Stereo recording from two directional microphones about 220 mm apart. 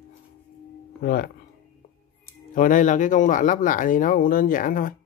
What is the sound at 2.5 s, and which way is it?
Speech, 35° left (ahead or behind).